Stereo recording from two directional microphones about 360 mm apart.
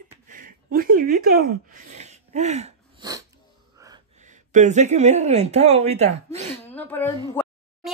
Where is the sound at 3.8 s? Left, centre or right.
Centre.